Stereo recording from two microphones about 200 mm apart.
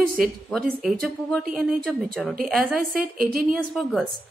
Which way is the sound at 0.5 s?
Centre (ahead or behind).